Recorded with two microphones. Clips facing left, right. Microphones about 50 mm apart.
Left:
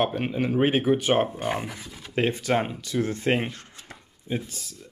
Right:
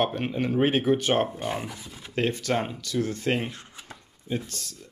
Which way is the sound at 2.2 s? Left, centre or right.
Centre.